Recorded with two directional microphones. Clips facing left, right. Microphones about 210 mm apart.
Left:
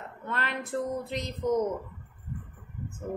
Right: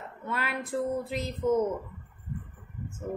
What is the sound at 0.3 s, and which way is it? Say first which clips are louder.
A woman's voice: even; 5° right (ahead or behind).